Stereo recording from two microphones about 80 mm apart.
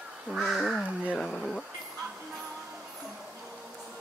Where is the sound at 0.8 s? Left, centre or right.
Left.